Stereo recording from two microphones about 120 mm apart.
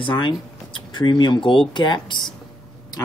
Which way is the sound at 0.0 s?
45° left (ahead or behind).